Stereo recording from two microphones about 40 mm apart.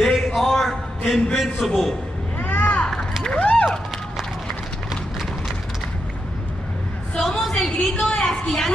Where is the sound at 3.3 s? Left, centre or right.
Left.